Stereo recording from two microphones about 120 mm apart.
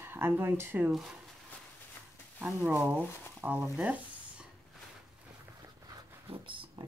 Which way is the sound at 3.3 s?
15° right (ahead or behind).